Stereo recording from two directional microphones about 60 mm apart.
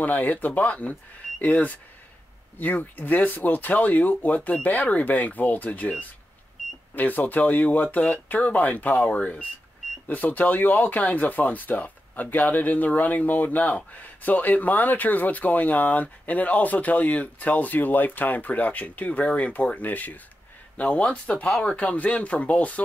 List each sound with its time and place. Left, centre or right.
0.0 s speech: left